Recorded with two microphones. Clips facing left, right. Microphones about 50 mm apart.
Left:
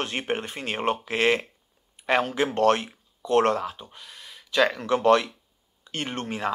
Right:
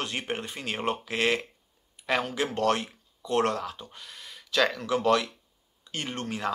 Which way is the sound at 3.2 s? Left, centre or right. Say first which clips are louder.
Left 5 dB; left.